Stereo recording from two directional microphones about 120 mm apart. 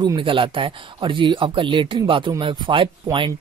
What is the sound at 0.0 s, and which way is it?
Speech, 45° right (ahead or behind).